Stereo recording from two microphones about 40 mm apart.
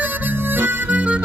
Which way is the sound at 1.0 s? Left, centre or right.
Right.